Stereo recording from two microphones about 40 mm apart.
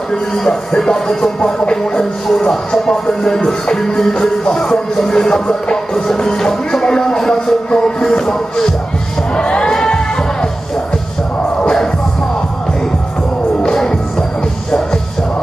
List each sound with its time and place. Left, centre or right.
0.1 s music: centre
9.3 s music: left